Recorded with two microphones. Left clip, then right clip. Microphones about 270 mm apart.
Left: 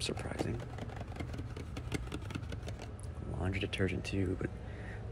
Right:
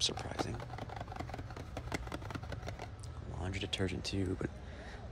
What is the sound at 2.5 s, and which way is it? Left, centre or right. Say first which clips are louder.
Vehicle: right 1 dB; centre.